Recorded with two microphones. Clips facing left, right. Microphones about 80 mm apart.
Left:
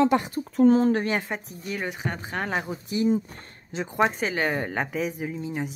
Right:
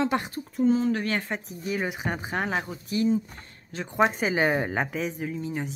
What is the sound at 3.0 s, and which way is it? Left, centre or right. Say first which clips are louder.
Speech: left 2 dB; left.